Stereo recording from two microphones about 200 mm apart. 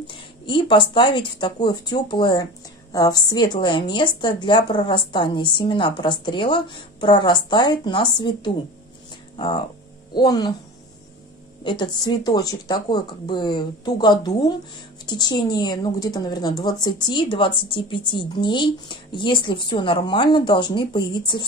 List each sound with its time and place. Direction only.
0.0 s a woman's voice: 25° left (ahead or behind)
10.1 s a woman's voice: 20° left (ahead or behind)
11.6 s a woman's voice: 20° left (ahead or behind)